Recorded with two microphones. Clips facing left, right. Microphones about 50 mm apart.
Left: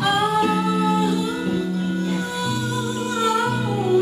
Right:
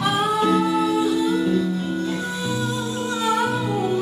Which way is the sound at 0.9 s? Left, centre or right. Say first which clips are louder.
Right 2 dB; left.